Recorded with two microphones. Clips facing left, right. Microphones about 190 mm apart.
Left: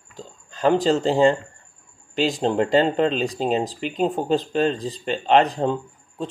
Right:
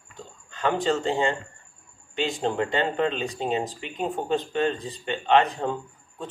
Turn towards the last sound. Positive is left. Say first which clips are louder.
# left 6 dB
turn(degrees=30)  # may be behind; listen again after turning